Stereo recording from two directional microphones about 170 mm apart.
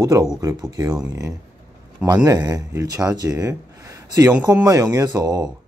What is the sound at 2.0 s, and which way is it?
Speech, 20° right (ahead or behind).